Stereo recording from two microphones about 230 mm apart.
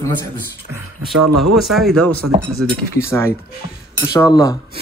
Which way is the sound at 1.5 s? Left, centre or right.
Centre.